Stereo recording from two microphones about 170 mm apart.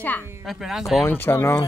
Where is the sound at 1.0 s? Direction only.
10° left (ahead or behind).